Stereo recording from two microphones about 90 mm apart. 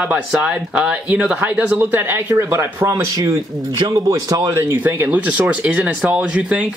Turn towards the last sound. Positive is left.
turn(degrees=-15)  # may be behind; listen again after turning